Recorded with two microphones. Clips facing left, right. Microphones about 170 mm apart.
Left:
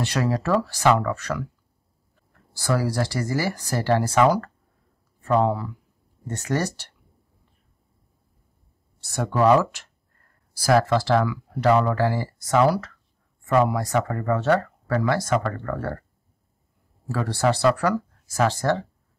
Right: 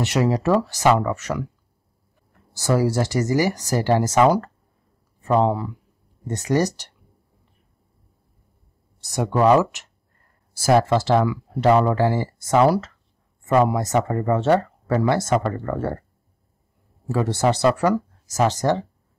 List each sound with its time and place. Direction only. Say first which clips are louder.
0.0 s speech: right 4 dB; 20° right (ahead or behind)
2.5 s speech: right 4 dB; 20° right (ahead or behind)
9.0 s speech: right 2 dB; 15° right (ahead or behind)
17.1 s speech: right 2 dB; 20° right (ahead or behind)